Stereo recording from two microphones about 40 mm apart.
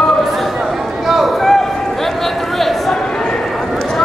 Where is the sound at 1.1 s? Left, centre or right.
Centre.